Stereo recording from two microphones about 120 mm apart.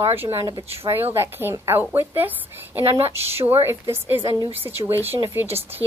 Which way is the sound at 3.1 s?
55° right (ahead or behind).